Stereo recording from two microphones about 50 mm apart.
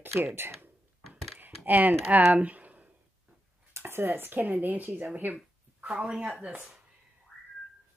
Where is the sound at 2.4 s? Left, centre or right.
Right.